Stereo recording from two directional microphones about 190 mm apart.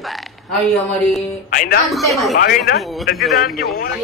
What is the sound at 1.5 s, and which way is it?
Speech, 50° left (ahead or behind).